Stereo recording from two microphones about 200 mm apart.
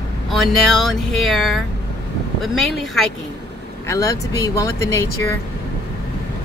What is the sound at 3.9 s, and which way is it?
Speech, 15° left (ahead or behind).